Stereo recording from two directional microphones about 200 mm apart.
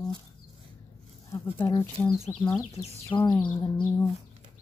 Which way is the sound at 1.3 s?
10° left (ahead or behind).